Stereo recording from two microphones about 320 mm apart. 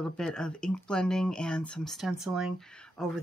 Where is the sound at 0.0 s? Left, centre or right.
Centre.